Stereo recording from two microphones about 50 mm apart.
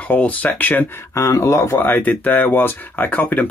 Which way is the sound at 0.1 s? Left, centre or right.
Left.